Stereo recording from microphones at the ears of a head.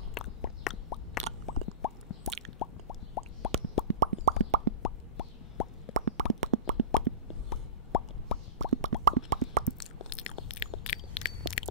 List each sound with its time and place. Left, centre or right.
0.1 s a sound: left
1.7 s plop: left
3.8 s plop: right
4.8 s plop: left
5.9 s plop: right
7.2 s plop: left
8.5 s plop: right
9.8 s a sound: left